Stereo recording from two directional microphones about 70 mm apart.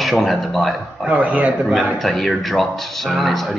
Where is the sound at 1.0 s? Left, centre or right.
Centre.